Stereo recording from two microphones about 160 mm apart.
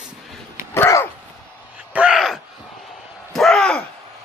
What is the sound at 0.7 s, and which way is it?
Dog, 20° left (ahead or behind).